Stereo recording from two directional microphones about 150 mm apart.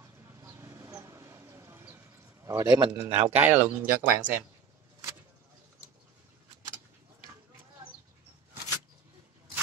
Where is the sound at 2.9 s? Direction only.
15° right (ahead or behind).